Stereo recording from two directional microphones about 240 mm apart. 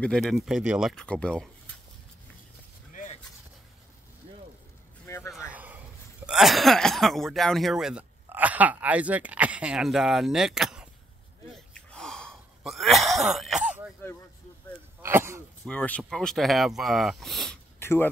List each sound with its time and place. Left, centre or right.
0.0 s speech: centre
2.9 s vehicle: left
5.0 s a sound: centre
5.3 s a sound: centre
6.2 s speech: centre
11.7 s a sound: centre
13.3 s throat clearing: centre
15.0 s speech: centre
15.6 s speech: centre